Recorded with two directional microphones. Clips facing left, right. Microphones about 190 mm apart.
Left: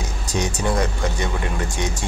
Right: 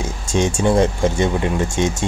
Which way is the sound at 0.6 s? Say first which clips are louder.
Right 8 dB; 25° right (ahead or behind).